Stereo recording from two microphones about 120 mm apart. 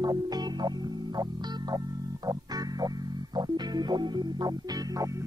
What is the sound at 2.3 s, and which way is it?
Music, 35° right (ahead or behind).